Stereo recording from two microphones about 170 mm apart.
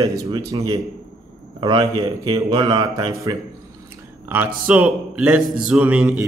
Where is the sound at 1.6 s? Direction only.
25° right (ahead or behind).